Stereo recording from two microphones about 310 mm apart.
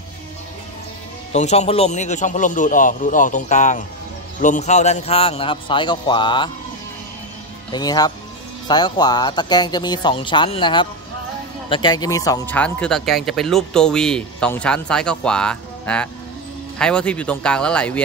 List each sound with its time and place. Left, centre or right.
1.3 s speech: left
7.7 s speech: centre